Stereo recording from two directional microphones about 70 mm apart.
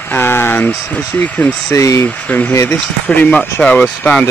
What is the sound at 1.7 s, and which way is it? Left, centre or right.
Speech, left.